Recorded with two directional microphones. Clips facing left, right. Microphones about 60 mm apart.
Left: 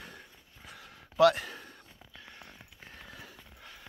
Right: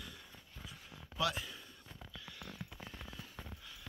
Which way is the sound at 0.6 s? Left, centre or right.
Left.